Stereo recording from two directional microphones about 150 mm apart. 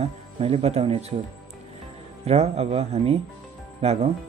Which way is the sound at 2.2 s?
45° right (ahead or behind).